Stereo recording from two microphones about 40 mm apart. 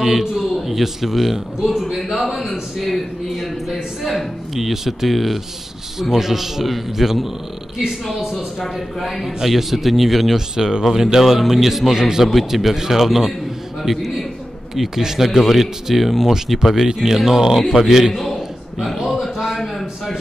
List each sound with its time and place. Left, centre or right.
0.0 s a man's voice: centre
2.0 s a man's voice: centre
8.7 s a man's voice: centre
10.5 s a man's voice: centre
18.1 s a sound: centre